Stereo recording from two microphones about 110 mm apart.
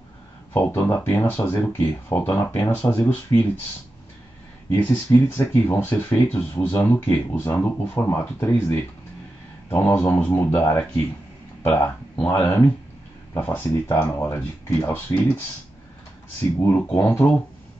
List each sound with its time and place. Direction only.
0.5 s speech: 20° left (ahead or behind)
4.7 s speech: 15° left (ahead or behind)